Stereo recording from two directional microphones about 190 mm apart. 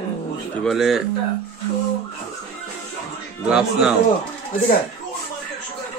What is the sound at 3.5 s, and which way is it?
Speech, 5° right (ahead or behind).